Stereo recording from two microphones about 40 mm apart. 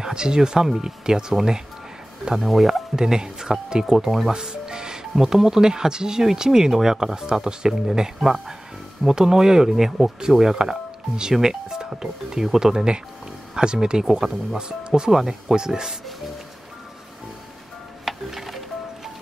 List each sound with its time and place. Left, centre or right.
0.0 s speech: centre
4.3 s music: centre
5.1 s speech: centre
18.0 s music: centre